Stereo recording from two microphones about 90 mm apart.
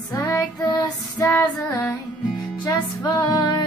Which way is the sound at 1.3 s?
30° left (ahead or behind).